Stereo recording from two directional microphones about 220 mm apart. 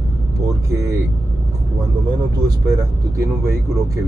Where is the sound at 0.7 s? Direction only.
15° right (ahead or behind).